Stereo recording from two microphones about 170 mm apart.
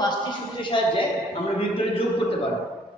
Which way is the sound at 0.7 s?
30° left (ahead or behind).